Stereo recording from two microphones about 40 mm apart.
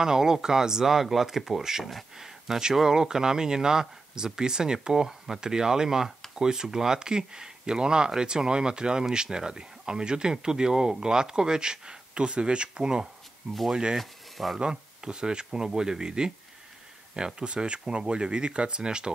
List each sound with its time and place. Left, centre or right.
0.0 s speech: centre
13.9 s speech: centre
14.6 s speech: right
17.4 s speech: right